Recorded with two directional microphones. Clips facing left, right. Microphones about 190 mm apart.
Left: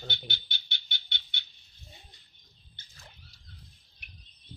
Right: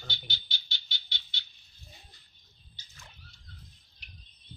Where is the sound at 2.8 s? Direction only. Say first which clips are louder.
Even; 55° left (ahead or behind).